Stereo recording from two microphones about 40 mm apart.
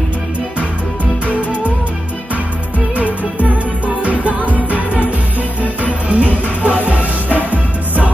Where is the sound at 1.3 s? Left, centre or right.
Right.